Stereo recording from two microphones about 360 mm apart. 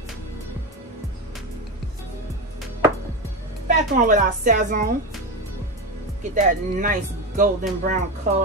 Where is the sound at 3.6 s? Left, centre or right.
Right.